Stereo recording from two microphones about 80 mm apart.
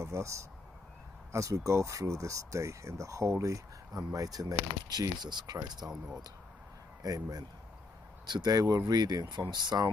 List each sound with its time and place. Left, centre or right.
0.0 s speech: right
5.8 s speech: right
7.0 s a man's voice: right